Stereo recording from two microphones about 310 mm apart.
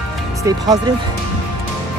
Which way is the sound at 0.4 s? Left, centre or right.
Centre.